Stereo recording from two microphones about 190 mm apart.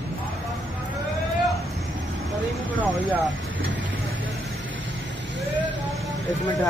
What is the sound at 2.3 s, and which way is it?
Vehicle, centre (ahead or behind).